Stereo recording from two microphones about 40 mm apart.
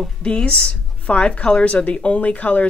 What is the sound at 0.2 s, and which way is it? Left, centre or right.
Speech, left.